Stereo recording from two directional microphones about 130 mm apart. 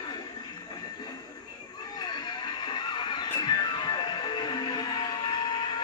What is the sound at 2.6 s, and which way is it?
Music, 35° left (ahead or behind).